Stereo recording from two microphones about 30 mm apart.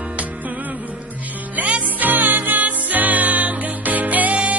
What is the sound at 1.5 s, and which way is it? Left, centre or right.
Music, right.